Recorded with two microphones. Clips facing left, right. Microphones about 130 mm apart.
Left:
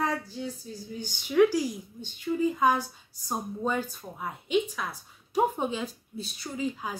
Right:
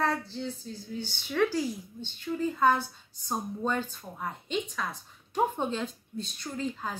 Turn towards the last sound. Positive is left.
turn(degrees=5)  # may be behind; listen again after turning